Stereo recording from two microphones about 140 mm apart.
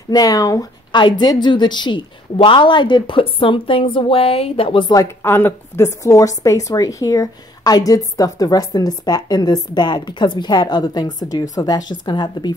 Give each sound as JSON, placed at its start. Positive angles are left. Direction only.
{"t": 0.1, "sound": "a woman's voice", "side_deg": 25}
{"t": 5.2, "sound": "a woman's voice", "side_deg": 15}